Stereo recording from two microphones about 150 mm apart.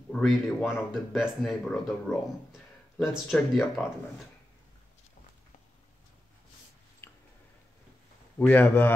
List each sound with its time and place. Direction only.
0.1 s speech: centre (ahead or behind)
7.0 s a sound: 15° left (ahead or behind)
8.4 s a man's voice: 10° left (ahead or behind)